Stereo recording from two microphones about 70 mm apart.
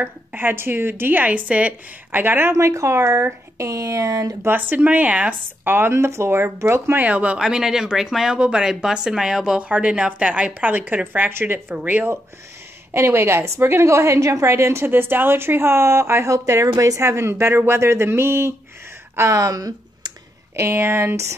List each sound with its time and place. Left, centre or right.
0.0 s a woman's voice: right
2.5 s speech: right
4.5 s a woman's voice: right
5.7 s a woman's voice: right
7.0 s a woman's voice: centre
7.4 s speech: centre
9.6 s a woman's voice: centre
12.9 s a woman's voice: right
19.1 s speech: right
20.5 s a woman's voice: right